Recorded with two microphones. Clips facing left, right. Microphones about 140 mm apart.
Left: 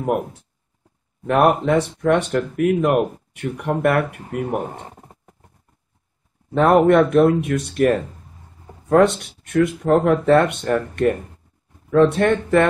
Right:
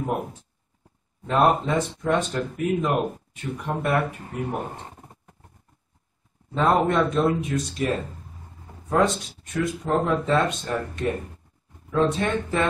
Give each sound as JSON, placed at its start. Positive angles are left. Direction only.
{"t": 1.2, "sound": "speech", "side_deg": 65}
{"t": 6.5, "sound": "speech", "side_deg": 60}